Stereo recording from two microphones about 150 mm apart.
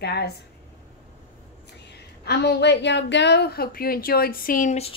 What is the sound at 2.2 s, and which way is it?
A woman's voice, 90° left.